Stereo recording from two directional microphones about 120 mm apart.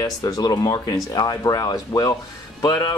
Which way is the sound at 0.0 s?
30° left (ahead or behind).